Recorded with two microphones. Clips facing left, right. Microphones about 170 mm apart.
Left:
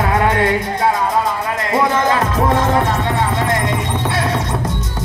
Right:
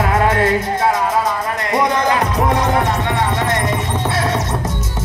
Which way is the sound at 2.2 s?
20° right (ahead or behind).